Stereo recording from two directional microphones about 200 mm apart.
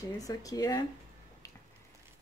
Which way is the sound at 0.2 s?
15° left (ahead or behind).